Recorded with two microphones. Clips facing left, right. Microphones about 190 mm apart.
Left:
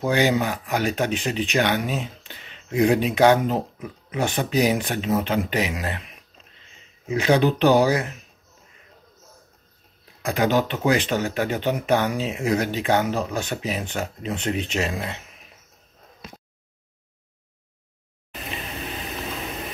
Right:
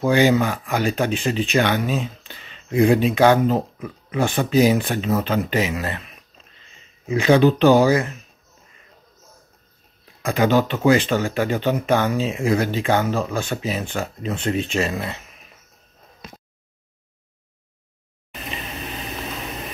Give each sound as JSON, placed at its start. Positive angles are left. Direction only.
{"t": 0.0, "sound": "speech", "side_deg": 15}
{"t": 7.2, "sound": "speech", "side_deg": 15}
{"t": 10.4, "sound": "speech", "side_deg": 15}